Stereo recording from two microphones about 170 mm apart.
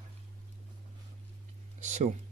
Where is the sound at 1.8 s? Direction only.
45° right (ahead or behind).